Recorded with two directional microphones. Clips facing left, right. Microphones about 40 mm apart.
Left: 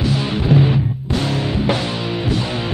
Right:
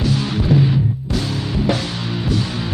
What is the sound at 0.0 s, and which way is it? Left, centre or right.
Music, centre.